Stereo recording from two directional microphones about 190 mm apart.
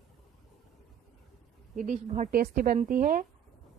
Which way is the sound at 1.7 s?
40° right (ahead or behind).